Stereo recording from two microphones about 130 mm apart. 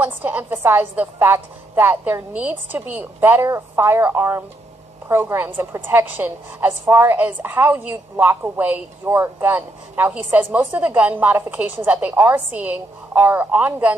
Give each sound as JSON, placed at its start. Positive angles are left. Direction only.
{"t": 0.0, "sound": "a woman's voice", "side_deg": -15}